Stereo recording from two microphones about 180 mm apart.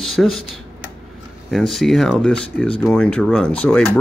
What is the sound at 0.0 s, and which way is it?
Speech, centre (ahead or behind).